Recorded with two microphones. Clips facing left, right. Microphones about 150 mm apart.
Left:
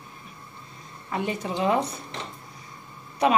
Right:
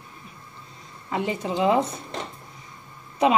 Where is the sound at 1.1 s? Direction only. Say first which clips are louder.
Right 2 dB; 25° right (ahead or behind).